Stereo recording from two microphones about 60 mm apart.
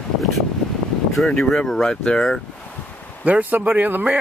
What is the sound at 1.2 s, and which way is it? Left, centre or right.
Speech, centre.